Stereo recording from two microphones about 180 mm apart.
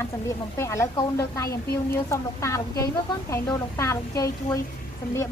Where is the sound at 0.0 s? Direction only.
15° left (ahead or behind).